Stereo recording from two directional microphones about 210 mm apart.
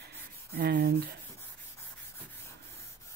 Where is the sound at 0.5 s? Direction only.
45° right (ahead or behind).